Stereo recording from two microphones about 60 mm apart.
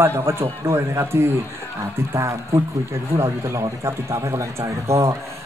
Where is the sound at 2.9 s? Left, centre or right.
Right.